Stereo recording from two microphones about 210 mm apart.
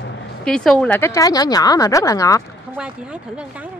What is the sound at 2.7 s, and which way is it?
Speech, 5° right (ahead or behind).